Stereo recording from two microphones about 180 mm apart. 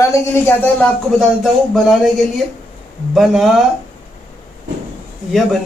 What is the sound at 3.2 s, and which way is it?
Speech, centre (ahead or behind).